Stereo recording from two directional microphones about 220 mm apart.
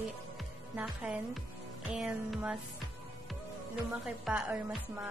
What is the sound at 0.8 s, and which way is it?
Speech, 5° right (ahead or behind).